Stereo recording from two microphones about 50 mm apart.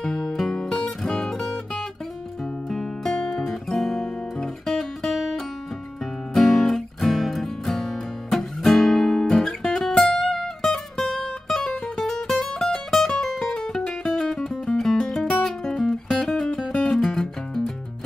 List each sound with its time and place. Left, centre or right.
0.0 s music: centre
3.4 s guitar: centre
6.3 s music: centre